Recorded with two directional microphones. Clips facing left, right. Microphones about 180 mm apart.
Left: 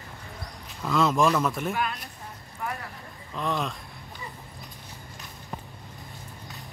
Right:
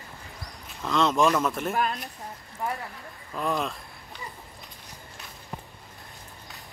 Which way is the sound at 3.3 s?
5° right (ahead or behind).